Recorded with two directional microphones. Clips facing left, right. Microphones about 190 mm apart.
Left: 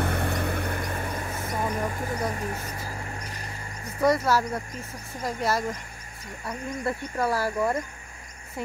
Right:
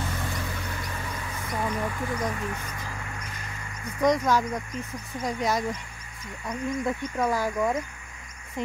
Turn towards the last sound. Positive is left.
turn(degrees=5)  # may be behind; listen again after turning